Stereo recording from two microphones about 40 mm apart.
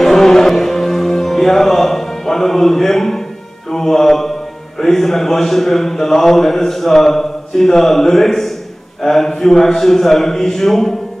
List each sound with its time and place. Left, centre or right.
0.0 s music: centre
3.7 s a man's voice: centre